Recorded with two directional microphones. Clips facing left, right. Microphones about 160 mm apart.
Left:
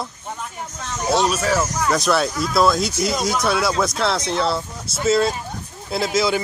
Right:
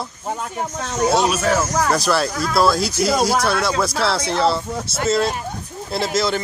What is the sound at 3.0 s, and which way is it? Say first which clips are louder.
Speech: right 4 dB; 60° right (ahead or behind).